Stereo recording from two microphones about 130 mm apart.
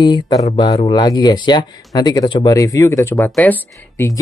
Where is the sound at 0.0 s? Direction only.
30° left (ahead or behind).